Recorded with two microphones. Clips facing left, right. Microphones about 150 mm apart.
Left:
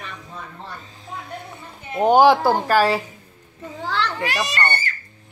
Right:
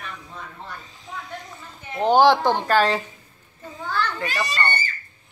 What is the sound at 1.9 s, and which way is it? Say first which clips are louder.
A man's voice: left 2 dB; 10° left (ahead or behind).